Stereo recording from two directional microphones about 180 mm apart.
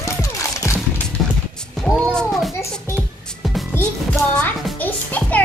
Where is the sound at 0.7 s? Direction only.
15° left (ahead or behind).